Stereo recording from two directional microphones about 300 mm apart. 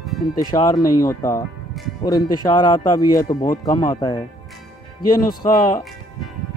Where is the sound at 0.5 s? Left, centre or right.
Centre.